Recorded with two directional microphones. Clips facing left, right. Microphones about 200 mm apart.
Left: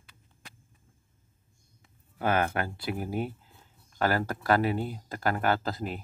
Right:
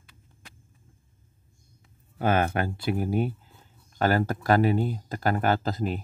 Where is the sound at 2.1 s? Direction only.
25° right (ahead or behind).